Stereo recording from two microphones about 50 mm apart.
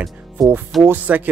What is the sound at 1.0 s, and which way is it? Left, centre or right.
Speech, right.